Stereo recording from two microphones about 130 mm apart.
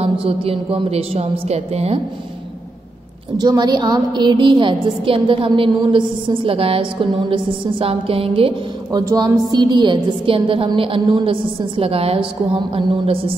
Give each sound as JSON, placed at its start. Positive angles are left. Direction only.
{"t": 0.0, "sound": "a woman's voice", "side_deg": -45}
{"t": 3.3, "sound": "a woman's voice", "side_deg": -30}
{"t": 8.9, "sound": "a woman's voice", "side_deg": -30}